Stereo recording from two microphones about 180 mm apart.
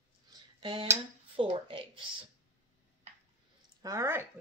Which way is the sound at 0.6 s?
30° right (ahead or behind).